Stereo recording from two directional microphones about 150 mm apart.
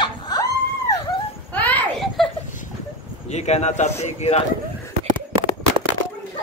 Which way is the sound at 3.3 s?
50° left (ahead or behind).